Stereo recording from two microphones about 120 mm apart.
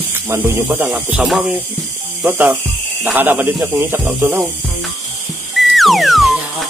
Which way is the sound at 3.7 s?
30° right (ahead or behind).